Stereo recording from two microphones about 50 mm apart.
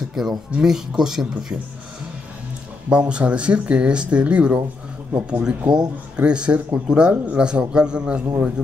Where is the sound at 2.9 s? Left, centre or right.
Right.